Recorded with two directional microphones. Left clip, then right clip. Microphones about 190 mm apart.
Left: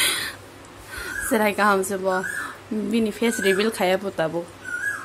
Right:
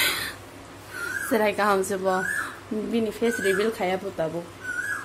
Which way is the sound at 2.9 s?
15° left (ahead or behind).